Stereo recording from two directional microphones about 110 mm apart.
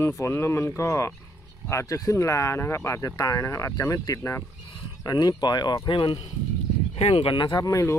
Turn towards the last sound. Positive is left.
turn(degrees=35)  # may be behind; listen again after turning